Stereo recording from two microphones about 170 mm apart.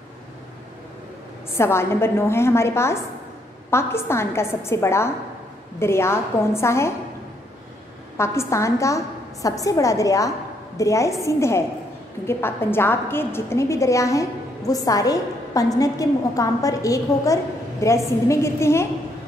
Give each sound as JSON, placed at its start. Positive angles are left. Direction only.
{"t": 1.6, "sound": "a woman's voice", "side_deg": 15}
{"t": 8.2, "sound": "a woman's voice", "side_deg": 15}